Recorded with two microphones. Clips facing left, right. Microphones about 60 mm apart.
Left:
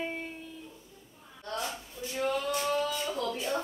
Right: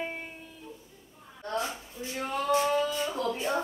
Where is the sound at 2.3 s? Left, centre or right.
Right.